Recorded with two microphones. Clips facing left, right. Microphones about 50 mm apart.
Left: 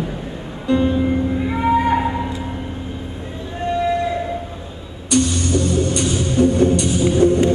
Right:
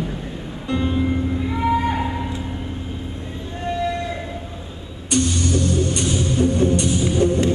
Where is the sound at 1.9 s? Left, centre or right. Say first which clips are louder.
Left 5 dB; centre.